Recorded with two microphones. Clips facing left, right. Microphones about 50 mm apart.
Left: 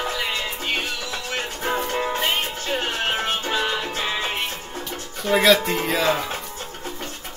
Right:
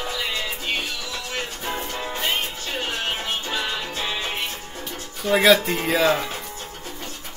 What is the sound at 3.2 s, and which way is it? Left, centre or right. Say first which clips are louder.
Music: left 3 dB; left.